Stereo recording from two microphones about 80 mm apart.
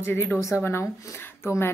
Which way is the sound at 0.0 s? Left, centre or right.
Left.